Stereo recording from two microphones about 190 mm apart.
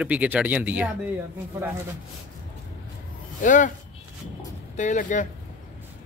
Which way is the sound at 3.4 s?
45° left (ahead or behind).